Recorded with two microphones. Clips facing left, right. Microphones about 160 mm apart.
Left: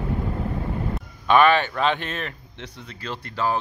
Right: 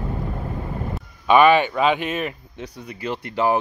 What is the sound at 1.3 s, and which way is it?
Speech, 10° right (ahead or behind).